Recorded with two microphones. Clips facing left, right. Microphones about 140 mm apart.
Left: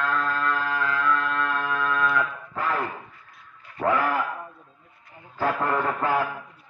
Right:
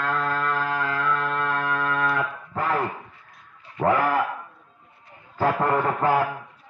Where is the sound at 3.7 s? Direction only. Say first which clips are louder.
Right 2 dB; 30° right (ahead or behind).